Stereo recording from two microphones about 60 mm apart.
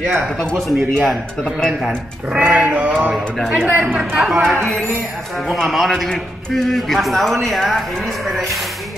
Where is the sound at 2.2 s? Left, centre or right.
Centre.